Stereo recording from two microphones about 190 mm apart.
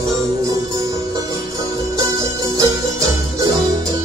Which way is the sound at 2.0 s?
15° right (ahead or behind).